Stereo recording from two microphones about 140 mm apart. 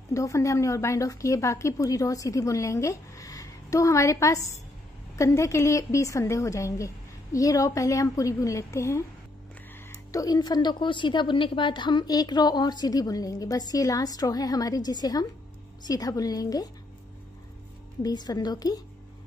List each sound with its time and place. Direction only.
0.1 s a woman's voice: 20° left (ahead or behind)
18.0 s a woman's voice: 30° left (ahead or behind)